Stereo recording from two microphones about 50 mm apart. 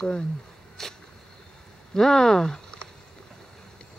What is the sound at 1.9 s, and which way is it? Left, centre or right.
Speech, centre.